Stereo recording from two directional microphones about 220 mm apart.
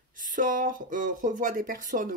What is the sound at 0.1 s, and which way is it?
Speech, 35° right (ahead or behind).